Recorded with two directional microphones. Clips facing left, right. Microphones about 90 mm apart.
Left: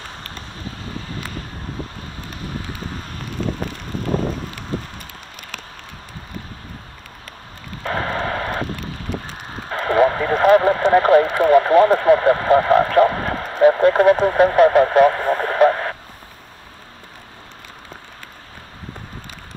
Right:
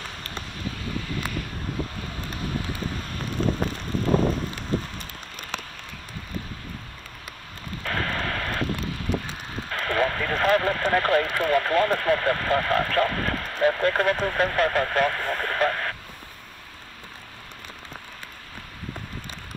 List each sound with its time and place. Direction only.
1.0 s vehicle: 30° left (ahead or behind)
7.8 s radio: 25° left (ahead or behind)
9.7 s radio: 25° left (ahead or behind)